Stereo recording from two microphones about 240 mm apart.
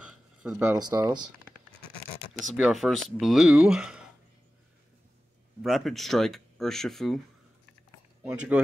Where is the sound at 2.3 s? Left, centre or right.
Centre.